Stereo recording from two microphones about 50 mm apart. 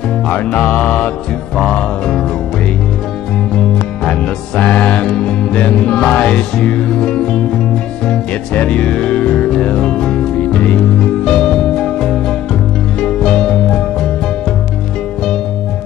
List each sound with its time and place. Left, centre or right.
0.3 s music: left
4.0 s music: left
4.6 s music: left; by 14.0 s centre